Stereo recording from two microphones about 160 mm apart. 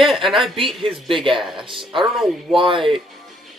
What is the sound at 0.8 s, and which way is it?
Speech, 30° right (ahead or behind).